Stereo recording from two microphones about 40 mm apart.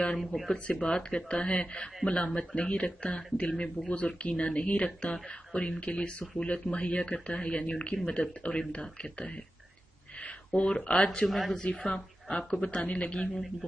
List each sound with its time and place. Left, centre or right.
0.3 s speech: left
11.2 s a woman's voice: centre
11.5 s speech: left